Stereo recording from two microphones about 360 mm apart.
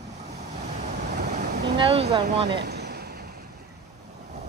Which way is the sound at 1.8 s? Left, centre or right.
Centre.